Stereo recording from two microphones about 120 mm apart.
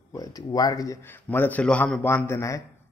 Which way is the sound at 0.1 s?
30° left (ahead or behind).